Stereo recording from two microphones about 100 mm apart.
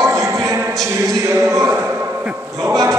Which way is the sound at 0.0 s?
30° right (ahead or behind).